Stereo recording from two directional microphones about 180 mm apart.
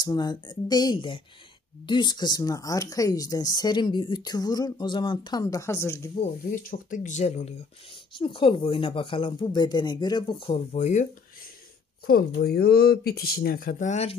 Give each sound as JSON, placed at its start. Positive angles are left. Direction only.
{"t": 0.0, "sound": "speech", "side_deg": 25}
{"t": 6.5, "sound": "speech", "side_deg": 50}
{"t": 12.1, "sound": "speech", "side_deg": 60}